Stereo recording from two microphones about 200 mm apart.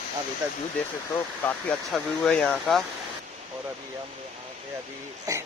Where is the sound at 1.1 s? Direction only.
5° left (ahead or behind).